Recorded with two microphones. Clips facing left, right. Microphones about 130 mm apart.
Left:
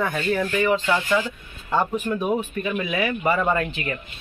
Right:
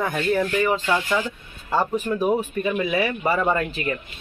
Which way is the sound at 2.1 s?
10° right (ahead or behind).